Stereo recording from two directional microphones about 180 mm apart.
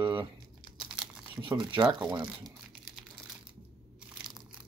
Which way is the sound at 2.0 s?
5° right (ahead or behind).